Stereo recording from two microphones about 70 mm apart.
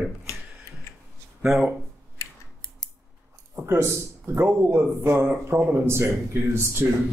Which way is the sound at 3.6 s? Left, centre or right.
Right.